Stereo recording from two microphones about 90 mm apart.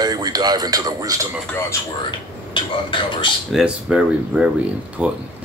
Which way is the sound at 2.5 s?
60° left (ahead or behind).